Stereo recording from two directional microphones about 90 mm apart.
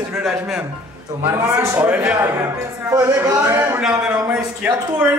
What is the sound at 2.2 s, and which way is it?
A man's voice, 35° right (ahead or behind).